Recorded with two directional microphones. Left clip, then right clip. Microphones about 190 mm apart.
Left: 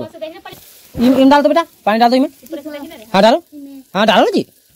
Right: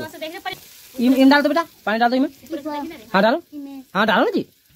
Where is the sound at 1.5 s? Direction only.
35° left (ahead or behind).